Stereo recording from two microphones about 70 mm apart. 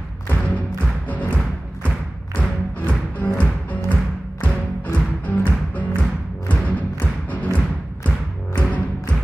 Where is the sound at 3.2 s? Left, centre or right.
Left.